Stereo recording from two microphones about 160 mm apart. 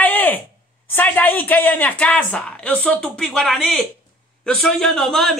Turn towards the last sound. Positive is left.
turn(degrees=0)  # may be behind; listen again after turning